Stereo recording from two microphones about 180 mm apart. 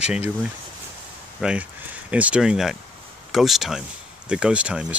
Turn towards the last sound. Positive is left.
turn(degrees=-5)  # may be behind; listen again after turning